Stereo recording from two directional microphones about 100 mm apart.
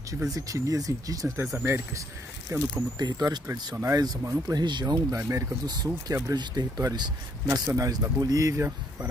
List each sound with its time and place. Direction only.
0.3 s speech: 35° right (ahead or behind)
3.0 s speech: 40° right (ahead or behind); by 9.1 s 25° right (ahead or behind)